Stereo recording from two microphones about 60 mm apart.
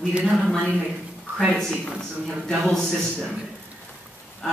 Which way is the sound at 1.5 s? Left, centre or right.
Centre.